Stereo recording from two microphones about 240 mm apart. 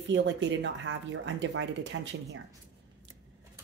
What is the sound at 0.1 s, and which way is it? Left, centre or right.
A woman's voice, right.